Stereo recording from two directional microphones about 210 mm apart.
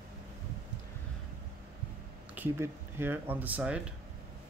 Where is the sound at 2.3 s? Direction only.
10° right (ahead or behind).